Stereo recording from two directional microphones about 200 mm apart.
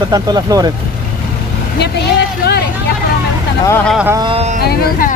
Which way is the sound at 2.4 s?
55° left (ahead or behind).